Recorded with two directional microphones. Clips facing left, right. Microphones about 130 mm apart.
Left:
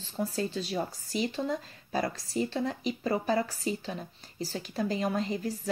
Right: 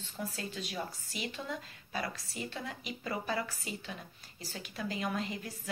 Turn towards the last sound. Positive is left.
turn(degrees=35)  # may be behind; listen again after turning